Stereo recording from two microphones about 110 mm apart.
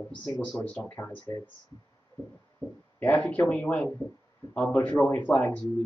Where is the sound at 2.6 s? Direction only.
20° left (ahead or behind).